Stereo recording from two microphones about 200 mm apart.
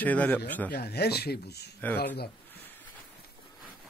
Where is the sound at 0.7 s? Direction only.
55° left (ahead or behind).